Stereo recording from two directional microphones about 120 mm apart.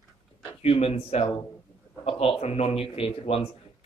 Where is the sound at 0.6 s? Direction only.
60° left (ahead or behind).